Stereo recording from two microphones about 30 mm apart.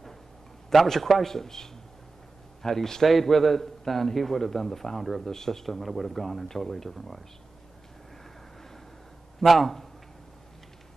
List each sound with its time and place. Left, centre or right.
0.8 s a man's voice: centre
9.4 s a man's voice: centre